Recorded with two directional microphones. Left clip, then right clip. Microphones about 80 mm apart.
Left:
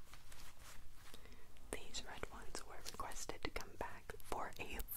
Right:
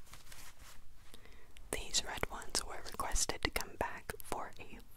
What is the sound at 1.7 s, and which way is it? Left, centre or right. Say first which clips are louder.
Whispering: right 11 dB; right.